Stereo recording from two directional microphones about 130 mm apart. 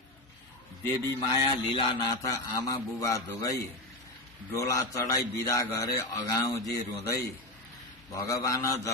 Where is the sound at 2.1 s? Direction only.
30° left (ahead or behind).